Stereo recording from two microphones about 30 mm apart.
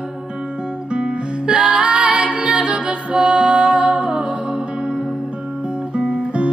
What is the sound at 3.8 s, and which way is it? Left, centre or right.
Music, right.